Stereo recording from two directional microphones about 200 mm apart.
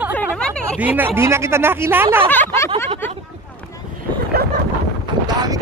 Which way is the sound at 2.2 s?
10° left (ahead or behind).